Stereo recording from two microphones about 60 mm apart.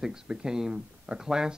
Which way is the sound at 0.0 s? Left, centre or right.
Centre.